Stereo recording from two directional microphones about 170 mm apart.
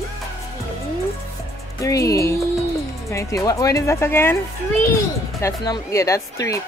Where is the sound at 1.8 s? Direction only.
20° left (ahead or behind).